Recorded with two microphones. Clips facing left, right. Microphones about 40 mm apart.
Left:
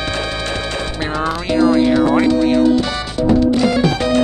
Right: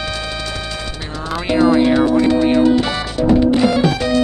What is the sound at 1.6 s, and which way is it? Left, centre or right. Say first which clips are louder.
Speech: even; centre.